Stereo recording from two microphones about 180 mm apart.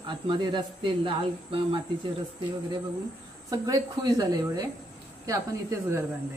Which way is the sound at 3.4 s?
20° right (ahead or behind).